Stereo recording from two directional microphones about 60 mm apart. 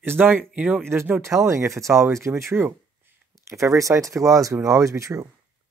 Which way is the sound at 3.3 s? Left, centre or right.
Right.